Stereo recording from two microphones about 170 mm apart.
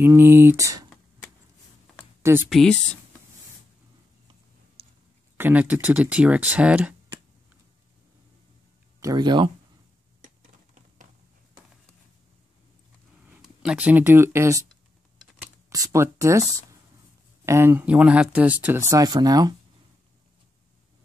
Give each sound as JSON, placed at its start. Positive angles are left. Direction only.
{"t": 0.0, "sound": "speech", "side_deg": -15}
{"t": 2.5, "sound": "speech", "side_deg": 5}
{"t": 4.8, "sound": "a sound", "side_deg": -35}
{"t": 5.4, "sound": "speech", "side_deg": -10}
{"t": 9.0, "sound": "speech", "side_deg": -25}
{"t": 10.2, "sound": "a sound", "side_deg": -50}
{"t": 13.3, "sound": "speech", "side_deg": -5}
{"t": 15.7, "sound": "speech", "side_deg": -20}